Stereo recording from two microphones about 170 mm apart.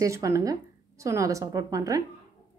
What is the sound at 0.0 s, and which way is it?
A woman's voice, 20° right (ahead or behind).